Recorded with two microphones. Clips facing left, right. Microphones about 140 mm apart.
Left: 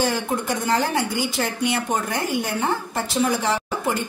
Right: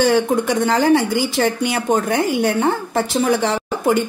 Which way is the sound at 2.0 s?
70° right (ahead or behind).